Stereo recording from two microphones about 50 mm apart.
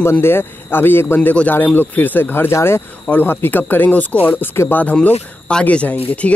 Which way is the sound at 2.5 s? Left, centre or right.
Left.